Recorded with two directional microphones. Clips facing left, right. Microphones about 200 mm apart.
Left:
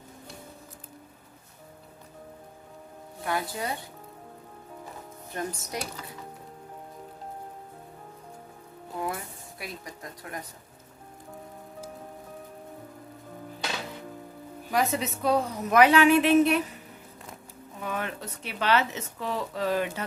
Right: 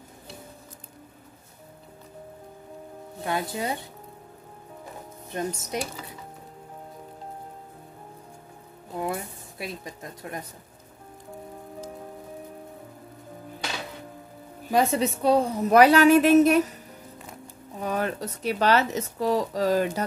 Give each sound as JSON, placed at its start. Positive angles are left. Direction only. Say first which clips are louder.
{"t": 3.3, "sound": "speech", "louder": "right 2 dB", "side_deg": -25}
{"t": 5.3, "sound": "speech", "louder": "right 4 dB", "side_deg": -25}
{"t": 8.9, "sound": "speech", "louder": "right 3 dB", "side_deg": -25}
{"t": 14.7, "sound": "speech", "louder": "right 5 dB", "side_deg": -30}
{"t": 17.7, "sound": "speech", "louder": "right 6 dB", "side_deg": -40}